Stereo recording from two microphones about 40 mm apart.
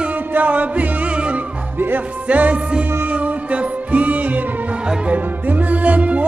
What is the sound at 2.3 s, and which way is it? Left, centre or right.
Music, right.